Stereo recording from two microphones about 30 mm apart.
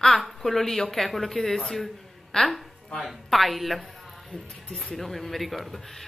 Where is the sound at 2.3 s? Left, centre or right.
Left.